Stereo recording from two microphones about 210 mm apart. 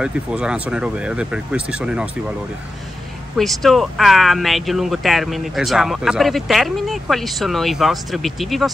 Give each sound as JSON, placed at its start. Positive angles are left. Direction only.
{"t": 0.0, "sound": "speech", "side_deg": -5}
{"t": 3.3, "sound": "speech", "side_deg": 0}